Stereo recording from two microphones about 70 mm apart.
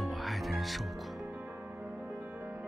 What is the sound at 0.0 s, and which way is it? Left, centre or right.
Music, centre.